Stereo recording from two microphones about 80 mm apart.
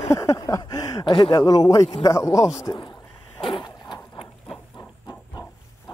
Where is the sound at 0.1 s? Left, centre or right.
Left.